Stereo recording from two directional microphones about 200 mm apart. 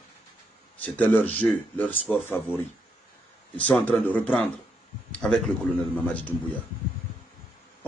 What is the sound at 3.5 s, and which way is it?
A man's voice, 5° left (ahead or behind).